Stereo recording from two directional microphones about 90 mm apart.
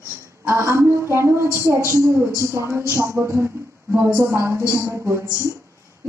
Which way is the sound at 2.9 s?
30° right (ahead or behind).